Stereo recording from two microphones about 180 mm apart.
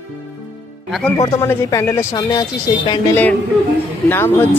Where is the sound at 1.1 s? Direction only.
20° left (ahead or behind).